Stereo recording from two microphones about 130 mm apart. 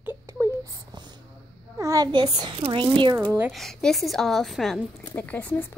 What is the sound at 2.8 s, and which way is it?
Speech, 35° right (ahead or behind).